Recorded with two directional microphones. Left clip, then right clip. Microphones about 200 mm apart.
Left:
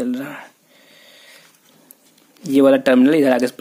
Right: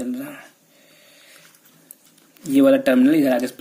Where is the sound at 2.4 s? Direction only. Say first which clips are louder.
Left 2 dB; 35° left (ahead or behind).